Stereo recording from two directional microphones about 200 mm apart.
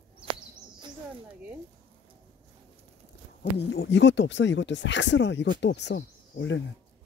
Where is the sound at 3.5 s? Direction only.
55° left (ahead or behind).